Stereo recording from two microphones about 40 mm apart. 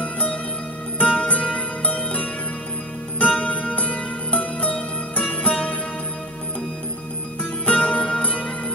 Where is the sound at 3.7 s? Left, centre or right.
Left.